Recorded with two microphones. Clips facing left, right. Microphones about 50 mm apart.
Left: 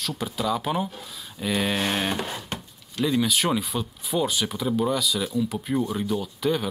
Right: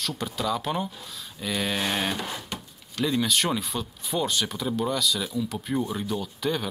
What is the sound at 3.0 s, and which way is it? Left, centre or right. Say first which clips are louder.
Speech: left 2 dB; centre.